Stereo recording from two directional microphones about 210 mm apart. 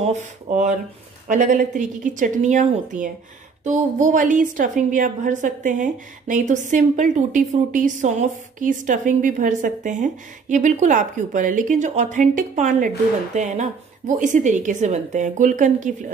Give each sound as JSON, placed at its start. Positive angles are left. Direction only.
{"t": 0.0, "sound": "a woman's voice", "side_deg": -35}